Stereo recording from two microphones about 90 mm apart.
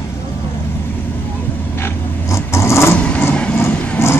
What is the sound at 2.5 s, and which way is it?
Vehicle, 30° left (ahead or behind).